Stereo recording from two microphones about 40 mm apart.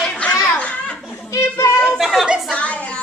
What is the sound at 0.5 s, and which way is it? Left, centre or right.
Children playing, left.